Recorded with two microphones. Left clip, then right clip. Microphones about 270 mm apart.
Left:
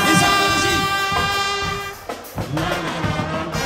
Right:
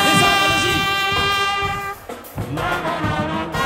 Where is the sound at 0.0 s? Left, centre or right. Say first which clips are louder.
Right 1 dB; right.